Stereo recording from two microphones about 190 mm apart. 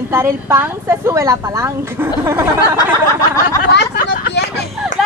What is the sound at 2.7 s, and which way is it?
Snicker, 15° left (ahead or behind).